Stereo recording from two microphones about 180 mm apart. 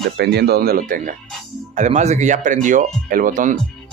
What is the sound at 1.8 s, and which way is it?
Speech, 40° right (ahead or behind).